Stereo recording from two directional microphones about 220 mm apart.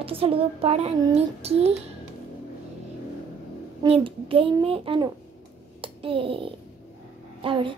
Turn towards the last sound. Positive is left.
turn(degrees=-25)  # may be behind; listen again after turning